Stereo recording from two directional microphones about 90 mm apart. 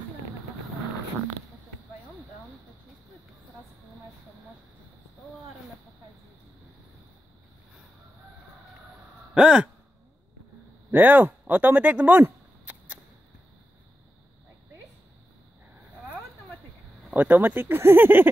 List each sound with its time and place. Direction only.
9.3 s sigh: 10° right (ahead or behind)
10.9 s speech: 20° right (ahead or behind)
17.1 s speech: 20° right (ahead or behind)